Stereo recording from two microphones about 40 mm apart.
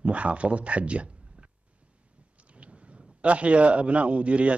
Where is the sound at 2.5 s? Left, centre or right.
Right.